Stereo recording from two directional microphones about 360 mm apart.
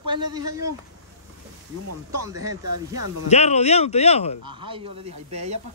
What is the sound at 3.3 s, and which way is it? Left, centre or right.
Speech, centre.